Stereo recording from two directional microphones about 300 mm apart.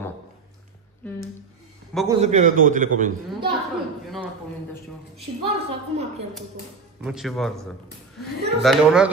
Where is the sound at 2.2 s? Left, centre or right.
Right.